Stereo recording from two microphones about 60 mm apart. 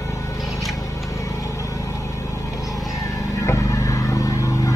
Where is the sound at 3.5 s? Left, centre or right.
Left.